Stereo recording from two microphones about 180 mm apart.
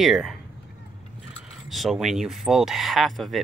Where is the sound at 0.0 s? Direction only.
Centre (ahead or behind).